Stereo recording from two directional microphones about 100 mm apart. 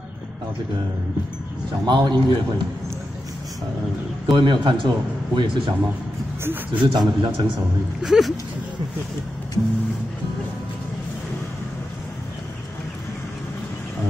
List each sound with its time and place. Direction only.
1.9 s a man's voice: 50° right (ahead or behind)
4.3 s a man's voice: 50° right (ahead or behind)
6.4 s speech: 20° right (ahead or behind)
6.8 s a man's voice: 50° right (ahead or behind)
8.0 s speech: 5° right (ahead or behind)